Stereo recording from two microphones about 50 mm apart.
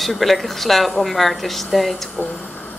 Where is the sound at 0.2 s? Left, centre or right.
Centre.